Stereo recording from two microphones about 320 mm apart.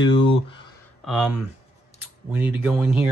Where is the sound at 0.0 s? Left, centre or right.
Centre.